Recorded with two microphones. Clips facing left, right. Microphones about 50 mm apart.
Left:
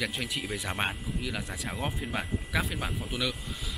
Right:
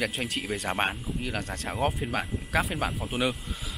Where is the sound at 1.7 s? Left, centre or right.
Centre.